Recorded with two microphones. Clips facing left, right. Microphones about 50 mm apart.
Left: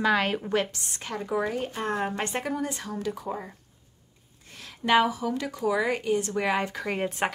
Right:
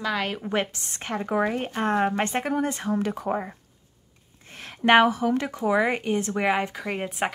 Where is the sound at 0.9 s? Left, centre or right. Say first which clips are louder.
Right 4 dB; right.